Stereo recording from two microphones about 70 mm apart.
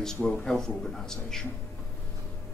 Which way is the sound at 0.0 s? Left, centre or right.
Centre.